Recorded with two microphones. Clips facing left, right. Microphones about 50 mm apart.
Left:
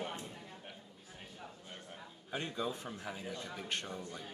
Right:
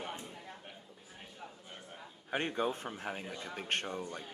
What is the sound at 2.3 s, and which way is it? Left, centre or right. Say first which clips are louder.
A man's voice: right 5 dB; right.